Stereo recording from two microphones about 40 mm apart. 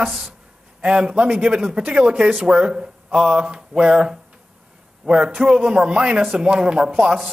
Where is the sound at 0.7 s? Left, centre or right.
Right.